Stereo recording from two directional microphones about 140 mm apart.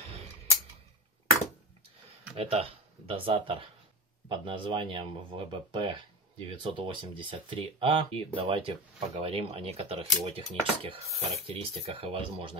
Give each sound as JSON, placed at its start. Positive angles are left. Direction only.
{"t": 2.3, "sound": "speech", "side_deg": -45}